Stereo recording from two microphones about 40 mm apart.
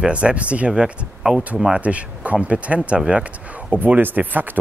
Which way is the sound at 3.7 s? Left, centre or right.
Right.